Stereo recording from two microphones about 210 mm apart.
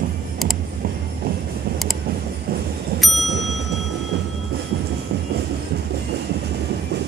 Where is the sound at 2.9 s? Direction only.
50° right (ahead or behind).